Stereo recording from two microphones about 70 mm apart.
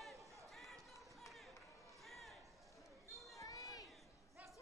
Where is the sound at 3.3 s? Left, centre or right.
Left.